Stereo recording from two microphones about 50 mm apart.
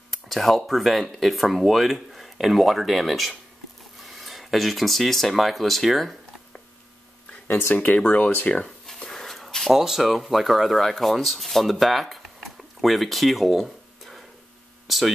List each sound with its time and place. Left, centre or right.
0.1 s speech: centre
7.4 s speech: left
8.6 s a sound: centre
9.7 s speech: centre
14.9 s hum: centre